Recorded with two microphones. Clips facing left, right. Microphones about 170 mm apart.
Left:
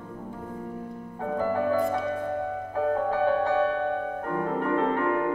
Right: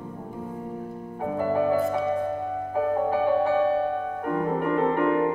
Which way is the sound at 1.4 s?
15° right (ahead or behind).